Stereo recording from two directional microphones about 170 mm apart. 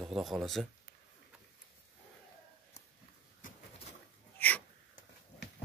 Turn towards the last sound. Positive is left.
turn(degrees=10)  # may be behind; listen again after turning